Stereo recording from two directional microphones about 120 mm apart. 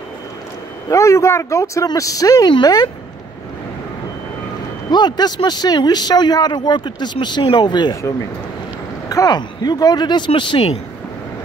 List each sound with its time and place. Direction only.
0.8 s speech: 25° left (ahead or behind)
4.9 s speech: 35° left (ahead or behind)
9.1 s speech: 30° left (ahead or behind)